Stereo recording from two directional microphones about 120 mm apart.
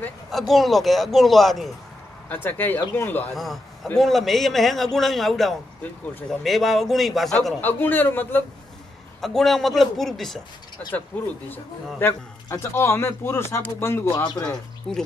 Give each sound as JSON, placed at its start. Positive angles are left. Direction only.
{"t": 0.3, "sound": "a man's voice", "side_deg": 0}
{"t": 2.2, "sound": "a man's voice", "side_deg": 15}
{"t": 3.3, "sound": "a man's voice", "side_deg": 0}
{"t": 7.6, "sound": "a man's voice", "side_deg": 15}
{"t": 9.2, "sound": "a man's voice", "side_deg": 0}
{"t": 11.5, "sound": "a man's voice", "side_deg": 15}
{"t": 14.1, "sound": "speech", "side_deg": 35}
{"t": 14.4, "sound": "a man's voice", "side_deg": 5}